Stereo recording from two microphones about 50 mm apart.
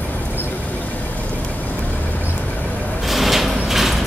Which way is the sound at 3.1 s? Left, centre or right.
Centre.